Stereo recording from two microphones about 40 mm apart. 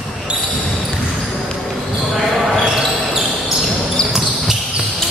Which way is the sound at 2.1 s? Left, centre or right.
Centre.